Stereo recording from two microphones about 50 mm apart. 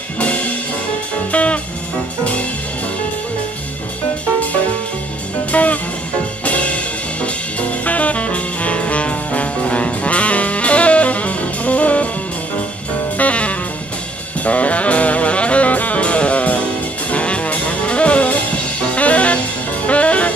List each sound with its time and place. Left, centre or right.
0.2 s music: left
5.5 s music: left
13.2 s music: left
18.9 s jazz: left
19.9 s music: left